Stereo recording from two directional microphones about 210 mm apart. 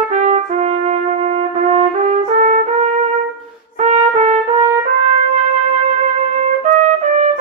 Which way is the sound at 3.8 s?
35° right (ahead or behind).